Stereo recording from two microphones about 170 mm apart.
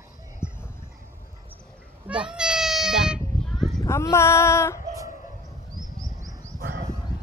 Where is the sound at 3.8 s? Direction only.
15° left (ahead or behind).